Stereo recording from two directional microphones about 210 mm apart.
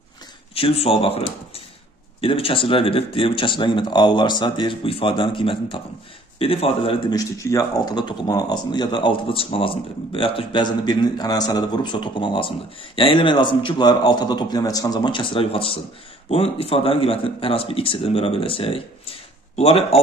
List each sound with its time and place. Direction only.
0.6 s speech: 25° left (ahead or behind)